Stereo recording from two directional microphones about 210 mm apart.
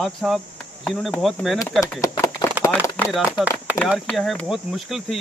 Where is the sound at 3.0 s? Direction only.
5° right (ahead or behind).